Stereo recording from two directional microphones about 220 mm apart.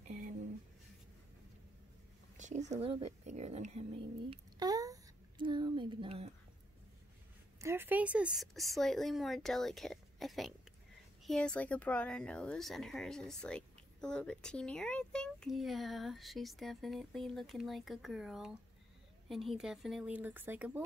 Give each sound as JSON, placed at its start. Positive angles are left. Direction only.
{"t": 0.1, "sound": "a sound", "side_deg": -35}
{"t": 2.6, "sound": "speech", "side_deg": -30}
{"t": 7.5, "sound": "speech", "side_deg": -10}